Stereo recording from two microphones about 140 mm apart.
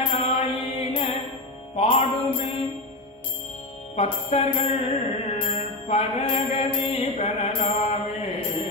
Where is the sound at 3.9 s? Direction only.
45° left (ahead or behind).